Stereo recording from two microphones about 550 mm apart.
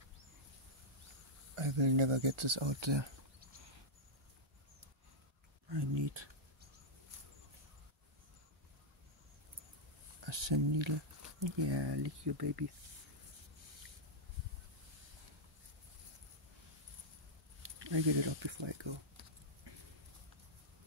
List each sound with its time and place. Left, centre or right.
1.5 s speech: right
5.7 s a sound: right
10.2 s speech: right
17.8 s speech: right